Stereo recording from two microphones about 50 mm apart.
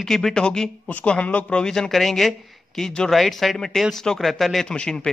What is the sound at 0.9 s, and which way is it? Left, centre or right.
Speech, left.